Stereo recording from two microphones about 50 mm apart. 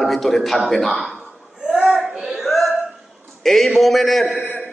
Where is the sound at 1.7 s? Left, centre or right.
Centre.